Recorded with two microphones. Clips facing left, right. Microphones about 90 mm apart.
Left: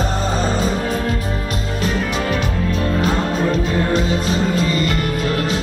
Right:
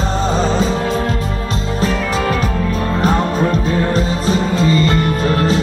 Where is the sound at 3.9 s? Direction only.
35° right (ahead or behind).